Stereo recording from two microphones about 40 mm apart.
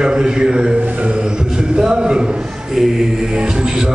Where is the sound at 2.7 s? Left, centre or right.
Centre.